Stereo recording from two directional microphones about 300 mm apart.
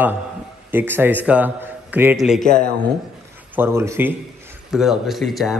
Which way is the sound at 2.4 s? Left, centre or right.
Left.